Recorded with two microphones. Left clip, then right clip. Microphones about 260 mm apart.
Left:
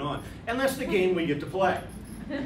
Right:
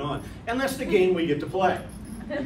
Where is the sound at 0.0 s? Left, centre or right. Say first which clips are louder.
Right 2 dB; centre.